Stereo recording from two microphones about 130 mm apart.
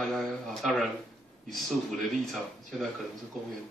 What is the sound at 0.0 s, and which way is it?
Speech, 5° left (ahead or behind).